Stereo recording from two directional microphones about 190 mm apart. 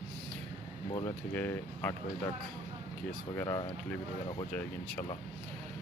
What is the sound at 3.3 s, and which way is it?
Speech, 15° left (ahead or behind).